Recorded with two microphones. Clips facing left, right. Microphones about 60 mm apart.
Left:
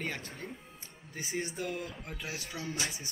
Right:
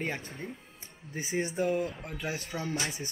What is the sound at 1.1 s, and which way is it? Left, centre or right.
Speech, right.